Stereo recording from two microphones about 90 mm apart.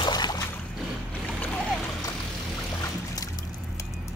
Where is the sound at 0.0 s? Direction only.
50° left (ahead or behind).